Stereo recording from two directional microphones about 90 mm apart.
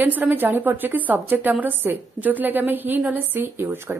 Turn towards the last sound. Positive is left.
turn(degrees=-25)  # may be behind; listen again after turning